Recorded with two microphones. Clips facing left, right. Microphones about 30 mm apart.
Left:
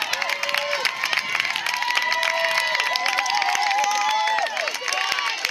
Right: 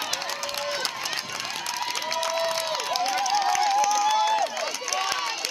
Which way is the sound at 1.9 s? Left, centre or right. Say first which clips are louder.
Left 6 dB; left.